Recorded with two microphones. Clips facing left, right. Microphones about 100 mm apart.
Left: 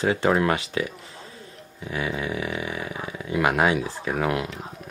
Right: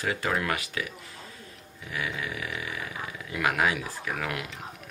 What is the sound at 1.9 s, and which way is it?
Speech, 25° left (ahead or behind).